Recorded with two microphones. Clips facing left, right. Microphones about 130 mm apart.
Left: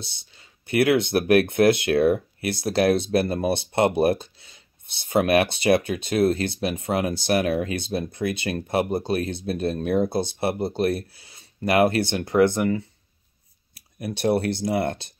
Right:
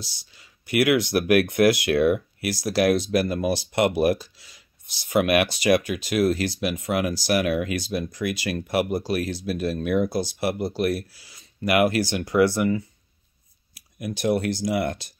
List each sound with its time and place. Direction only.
0.0 s speech: 25° left (ahead or behind)
13.9 s speech: 30° left (ahead or behind)